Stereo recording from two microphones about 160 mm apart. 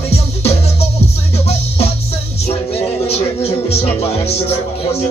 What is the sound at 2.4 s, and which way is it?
Music, 40° left (ahead or behind).